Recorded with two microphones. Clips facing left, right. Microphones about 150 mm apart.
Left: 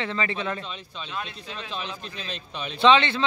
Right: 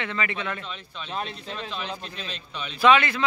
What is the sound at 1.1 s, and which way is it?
Speech, 35° right (ahead or behind).